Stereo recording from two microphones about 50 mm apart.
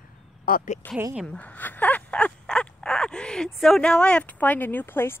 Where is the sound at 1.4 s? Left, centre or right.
Left; by 3.8 s centre.